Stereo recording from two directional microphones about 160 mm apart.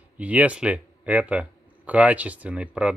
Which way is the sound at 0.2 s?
10° right (ahead or behind).